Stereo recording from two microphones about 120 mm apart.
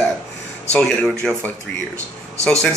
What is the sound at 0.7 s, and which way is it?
Speech, 5° left (ahead or behind).